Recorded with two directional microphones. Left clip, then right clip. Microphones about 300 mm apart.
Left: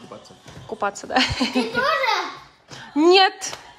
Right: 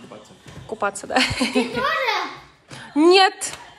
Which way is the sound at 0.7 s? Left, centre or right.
Centre.